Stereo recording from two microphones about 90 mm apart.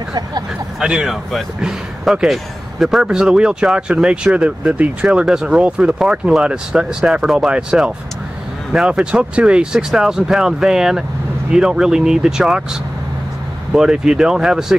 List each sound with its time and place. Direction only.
0.7 s speech: 5° right (ahead or behind)
13.7 s speech: 5° right (ahead or behind)